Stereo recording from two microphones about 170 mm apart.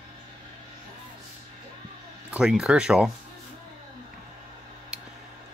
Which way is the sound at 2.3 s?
5° right (ahead or behind).